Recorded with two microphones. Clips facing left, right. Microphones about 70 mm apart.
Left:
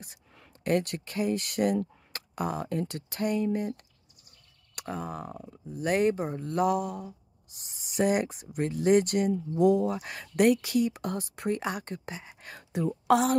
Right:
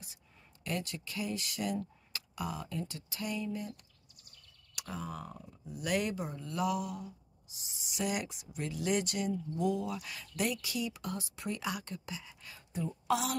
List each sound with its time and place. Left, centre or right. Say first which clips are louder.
0.7 s speech: left 11 dB; left
10.2 s speech: left 13 dB; left